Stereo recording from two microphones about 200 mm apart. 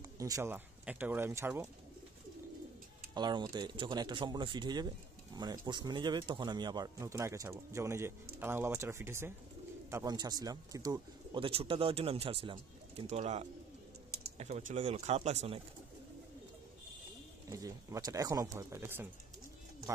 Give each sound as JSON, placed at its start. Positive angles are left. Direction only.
{"t": 0.0, "sound": "speech", "side_deg": -15}
{"t": 3.2, "sound": "speech", "side_deg": -20}
{"t": 17.5, "sound": "speech", "side_deg": -15}